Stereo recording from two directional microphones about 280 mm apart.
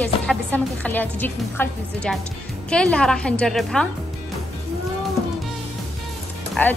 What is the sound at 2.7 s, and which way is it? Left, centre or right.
A woman's voice, centre.